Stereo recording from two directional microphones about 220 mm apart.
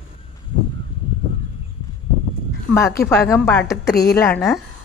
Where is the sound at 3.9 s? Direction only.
45° left (ahead or behind).